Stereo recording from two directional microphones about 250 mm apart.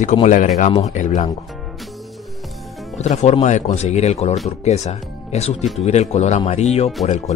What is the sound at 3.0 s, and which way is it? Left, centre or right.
Speech, left.